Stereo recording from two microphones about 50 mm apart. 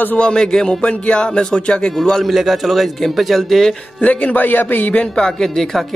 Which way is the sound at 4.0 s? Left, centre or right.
Left.